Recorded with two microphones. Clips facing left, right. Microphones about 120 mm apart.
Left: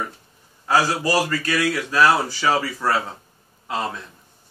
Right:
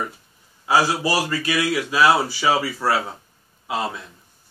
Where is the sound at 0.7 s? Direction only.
10° right (ahead or behind).